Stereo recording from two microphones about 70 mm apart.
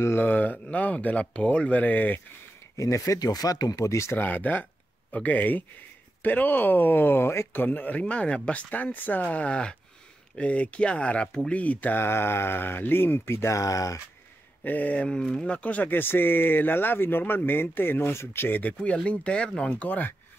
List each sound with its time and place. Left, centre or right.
0.0 s speech: left
2.8 s speech: left
4.2 s speech: left
12.0 s speech: left
14.6 s speech: left